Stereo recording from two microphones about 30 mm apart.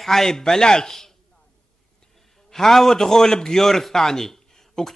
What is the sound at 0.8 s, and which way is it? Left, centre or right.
Speech, centre.